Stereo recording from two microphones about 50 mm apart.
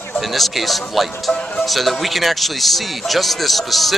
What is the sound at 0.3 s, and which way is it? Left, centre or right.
Speech, centre.